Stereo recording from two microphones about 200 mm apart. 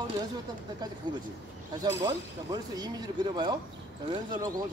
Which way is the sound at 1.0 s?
20° right (ahead or behind).